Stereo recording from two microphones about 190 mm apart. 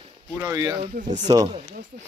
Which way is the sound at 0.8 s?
40° right (ahead or behind).